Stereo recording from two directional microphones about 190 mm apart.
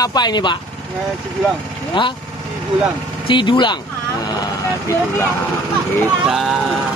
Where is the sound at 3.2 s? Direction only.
25° left (ahead or behind).